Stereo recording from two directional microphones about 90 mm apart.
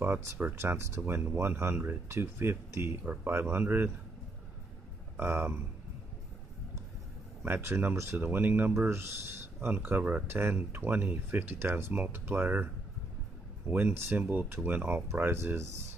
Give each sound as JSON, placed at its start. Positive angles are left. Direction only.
{"t": 0.0, "sound": "speech", "side_deg": -25}
{"t": 5.1, "sound": "speech", "side_deg": -25}
{"t": 7.4, "sound": "speech", "side_deg": -20}
{"t": 13.7, "sound": "speech", "side_deg": -20}